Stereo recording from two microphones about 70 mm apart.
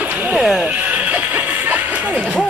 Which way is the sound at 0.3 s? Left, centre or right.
Centre.